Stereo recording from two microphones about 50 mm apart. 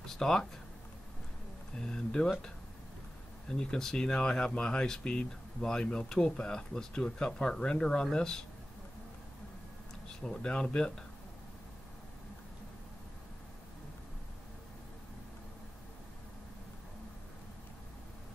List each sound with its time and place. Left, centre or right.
0.0 s a sound: centre
1.8 s speech: centre
3.4 s speech: centre
10.0 s speech: centre